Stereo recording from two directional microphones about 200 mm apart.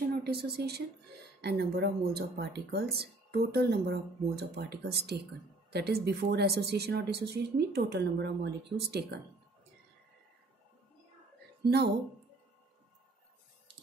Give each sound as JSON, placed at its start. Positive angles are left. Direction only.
{"t": 0.1, "sound": "speech", "side_deg": -55}
{"t": 11.6, "sound": "speech", "side_deg": -55}